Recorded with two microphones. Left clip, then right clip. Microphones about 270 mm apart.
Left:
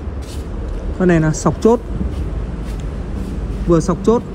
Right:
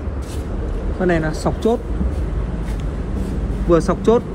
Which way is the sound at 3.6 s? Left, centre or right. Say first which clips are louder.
Even; centre.